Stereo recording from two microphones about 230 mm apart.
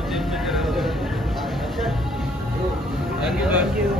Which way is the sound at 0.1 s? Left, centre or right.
Centre.